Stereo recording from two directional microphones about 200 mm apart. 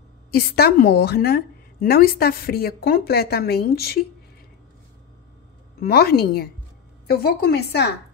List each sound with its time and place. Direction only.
0.3 s a woman's voice: 50° left (ahead or behind)
5.8 s a woman's voice: 50° left (ahead or behind)